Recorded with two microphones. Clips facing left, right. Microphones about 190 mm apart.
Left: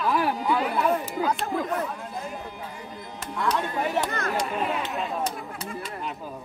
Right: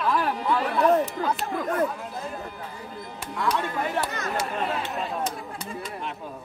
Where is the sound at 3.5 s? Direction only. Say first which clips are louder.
Left 1 dB; centre (ahead or behind).